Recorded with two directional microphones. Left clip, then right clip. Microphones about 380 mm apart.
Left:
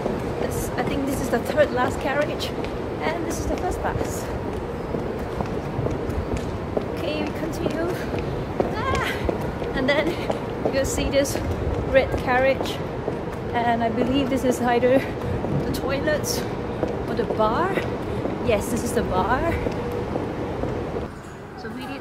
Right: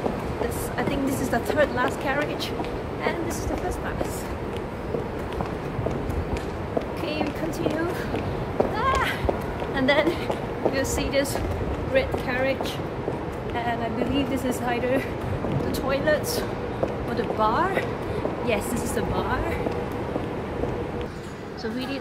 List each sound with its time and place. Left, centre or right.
1.3 s speech: centre
9.8 s speech: centre
11.9 s a woman's voice: centre
13.6 s a woman's voice: left
17.4 s a woman's voice: centre